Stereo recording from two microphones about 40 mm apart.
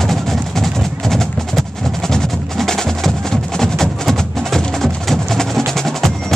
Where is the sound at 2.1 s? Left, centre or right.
Centre.